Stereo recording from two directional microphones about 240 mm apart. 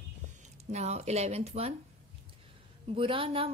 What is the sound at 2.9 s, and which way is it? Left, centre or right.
Speech, right.